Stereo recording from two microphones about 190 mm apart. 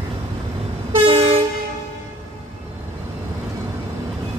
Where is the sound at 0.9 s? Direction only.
30° right (ahead or behind).